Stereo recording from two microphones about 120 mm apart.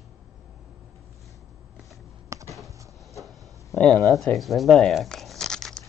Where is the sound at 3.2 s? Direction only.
Centre (ahead or behind).